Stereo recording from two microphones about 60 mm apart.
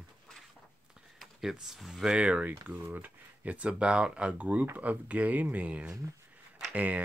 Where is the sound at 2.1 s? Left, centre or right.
Centre.